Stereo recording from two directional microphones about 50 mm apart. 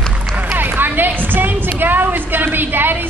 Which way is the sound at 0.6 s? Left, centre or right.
Right.